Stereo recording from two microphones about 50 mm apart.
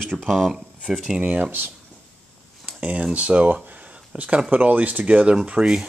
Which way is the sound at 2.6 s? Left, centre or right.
Right.